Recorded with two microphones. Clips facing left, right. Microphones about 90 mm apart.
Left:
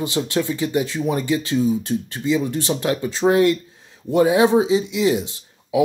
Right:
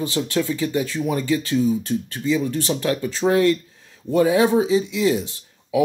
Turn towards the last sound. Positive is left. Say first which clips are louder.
# left 1 dB
turn(degrees=20)  # may be behind; listen again after turning